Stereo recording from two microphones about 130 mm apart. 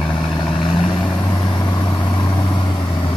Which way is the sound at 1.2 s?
25° left (ahead or behind).